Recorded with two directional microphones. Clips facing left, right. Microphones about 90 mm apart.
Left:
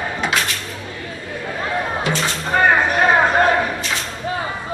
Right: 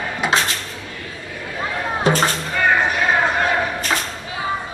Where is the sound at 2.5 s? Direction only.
45° left (ahead or behind).